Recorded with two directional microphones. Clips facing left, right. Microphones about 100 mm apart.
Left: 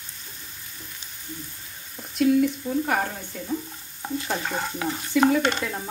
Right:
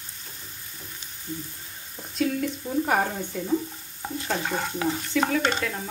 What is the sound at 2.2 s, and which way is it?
Speech, 5° left (ahead or behind).